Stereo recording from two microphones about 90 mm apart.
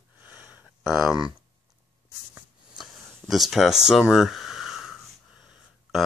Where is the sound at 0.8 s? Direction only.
Centre (ahead or behind).